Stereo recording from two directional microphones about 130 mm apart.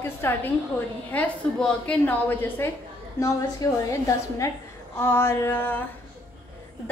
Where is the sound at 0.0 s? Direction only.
20° left (ahead or behind).